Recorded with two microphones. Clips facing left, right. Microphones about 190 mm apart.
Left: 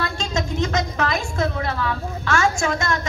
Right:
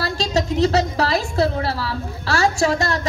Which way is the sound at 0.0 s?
35° right (ahead or behind).